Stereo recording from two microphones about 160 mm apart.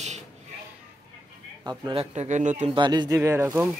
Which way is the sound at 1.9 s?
40° right (ahead or behind).